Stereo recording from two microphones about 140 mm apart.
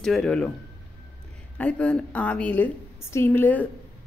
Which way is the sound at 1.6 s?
10° left (ahead or behind).